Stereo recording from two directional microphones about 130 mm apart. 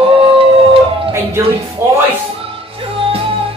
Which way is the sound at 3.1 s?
45° right (ahead or behind).